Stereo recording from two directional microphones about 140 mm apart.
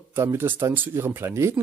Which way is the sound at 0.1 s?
20° right (ahead or behind).